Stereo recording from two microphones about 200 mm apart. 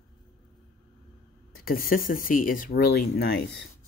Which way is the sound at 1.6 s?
45° left (ahead or behind).